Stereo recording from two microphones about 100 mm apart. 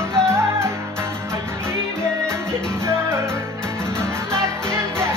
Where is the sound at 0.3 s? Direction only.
25° right (ahead or behind).